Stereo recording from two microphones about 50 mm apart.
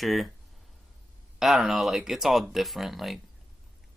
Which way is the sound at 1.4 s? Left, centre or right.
Centre.